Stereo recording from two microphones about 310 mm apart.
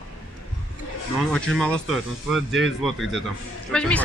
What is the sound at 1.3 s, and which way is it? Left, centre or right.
Speech, centre.